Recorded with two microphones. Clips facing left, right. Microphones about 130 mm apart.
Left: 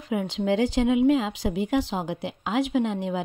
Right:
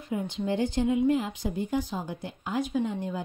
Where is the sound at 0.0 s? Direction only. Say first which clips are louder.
Left 4 dB; 90° left.